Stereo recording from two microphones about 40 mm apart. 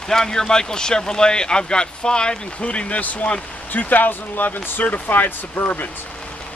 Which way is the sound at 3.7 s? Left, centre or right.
Left.